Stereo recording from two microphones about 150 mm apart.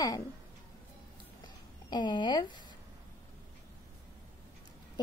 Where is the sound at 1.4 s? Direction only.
30° left (ahead or behind).